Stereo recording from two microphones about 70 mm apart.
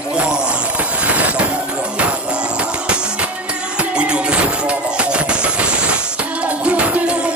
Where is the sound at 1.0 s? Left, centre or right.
Centre.